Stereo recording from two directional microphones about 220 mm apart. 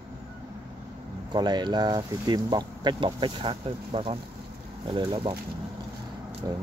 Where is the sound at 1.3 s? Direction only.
20° right (ahead or behind).